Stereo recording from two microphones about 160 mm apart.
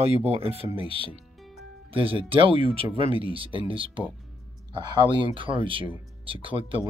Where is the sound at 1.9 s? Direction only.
35° right (ahead or behind).